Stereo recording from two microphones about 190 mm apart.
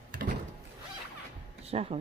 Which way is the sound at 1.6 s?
30° right (ahead or behind).